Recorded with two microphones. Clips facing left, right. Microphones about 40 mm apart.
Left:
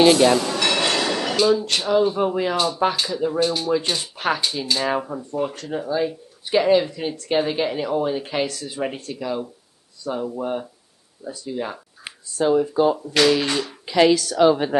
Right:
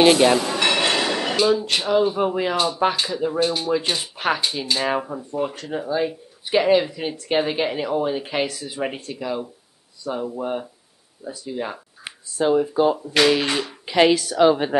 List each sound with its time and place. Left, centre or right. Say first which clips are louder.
0.0 s speech: even; right